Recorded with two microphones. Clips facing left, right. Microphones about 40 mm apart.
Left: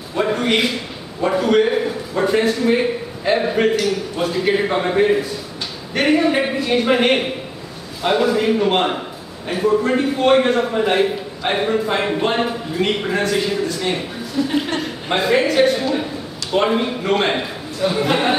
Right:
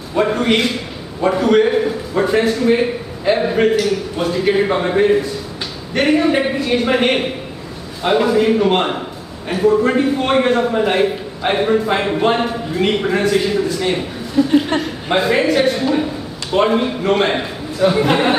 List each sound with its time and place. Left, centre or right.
0.1 s a man's voice: centre
14.4 s speech: centre
14.8 s a man's voice: centre